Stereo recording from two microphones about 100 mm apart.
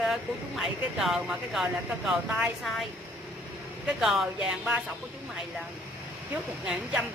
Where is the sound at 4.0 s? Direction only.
Centre (ahead or behind).